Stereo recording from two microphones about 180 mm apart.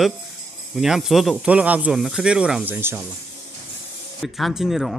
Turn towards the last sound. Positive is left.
turn(degrees=0)  # may be behind; listen again after turning